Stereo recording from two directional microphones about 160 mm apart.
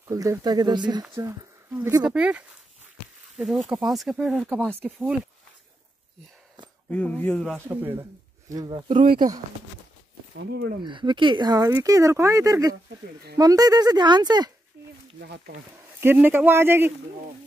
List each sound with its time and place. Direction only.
0.1 s speech: 20° right (ahead or behind)
1.7 s speech: 10° right (ahead or behind); by 4.7 s 5° left (ahead or behind)
6.9 s speech: 10° left (ahead or behind)
7.5 s speech: 15° right (ahead or behind)
8.5 s speech: 25° right (ahead or behind)
8.9 s speech: 60° right (ahead or behind)
10.3 s speech: 90° right
10.8 s speech: 30° right (ahead or behind)
15.1 s speech: 80° right
16.0 s speech: 15° right (ahead or behind)